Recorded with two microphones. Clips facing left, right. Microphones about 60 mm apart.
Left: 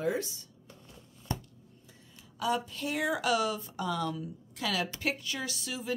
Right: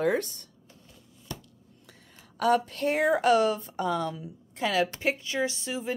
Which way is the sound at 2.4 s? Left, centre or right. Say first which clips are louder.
Right 7 dB; right.